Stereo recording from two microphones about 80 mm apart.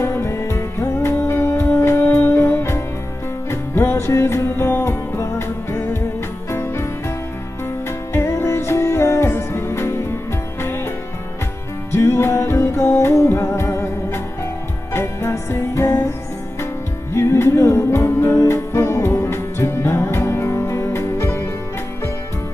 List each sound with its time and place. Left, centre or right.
0.0 s music: left
8.1 s music: left
11.9 s music: left
17.1 s music: left